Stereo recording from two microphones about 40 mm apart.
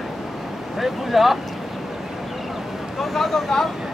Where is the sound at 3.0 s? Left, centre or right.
Centre.